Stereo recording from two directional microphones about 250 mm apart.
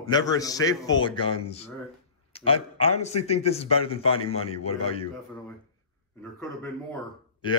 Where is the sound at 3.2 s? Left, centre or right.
Left.